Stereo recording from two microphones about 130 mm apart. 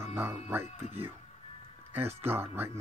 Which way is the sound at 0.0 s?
20° right (ahead or behind).